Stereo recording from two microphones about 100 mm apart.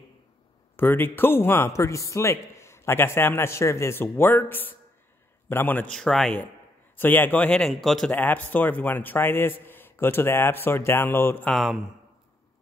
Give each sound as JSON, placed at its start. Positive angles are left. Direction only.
{"t": 0.7, "sound": "a man's voice", "side_deg": 20}
{"t": 5.9, "sound": "speech", "side_deg": 5}
{"t": 7.0, "sound": "speech", "side_deg": 20}
{"t": 8.1, "sound": "a man's voice", "side_deg": 15}
{"t": 11.5, "sound": "speech", "side_deg": -5}